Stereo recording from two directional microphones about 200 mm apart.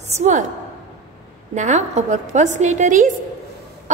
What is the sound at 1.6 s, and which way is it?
A woman's voice, 35° right (ahead or behind).